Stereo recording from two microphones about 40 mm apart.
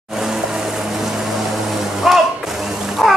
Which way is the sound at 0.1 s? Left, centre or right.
Centre.